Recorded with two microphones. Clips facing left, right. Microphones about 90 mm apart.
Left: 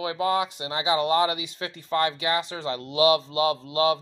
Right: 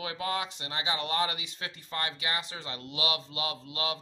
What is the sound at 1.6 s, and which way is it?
Speech, 35° left (ahead or behind).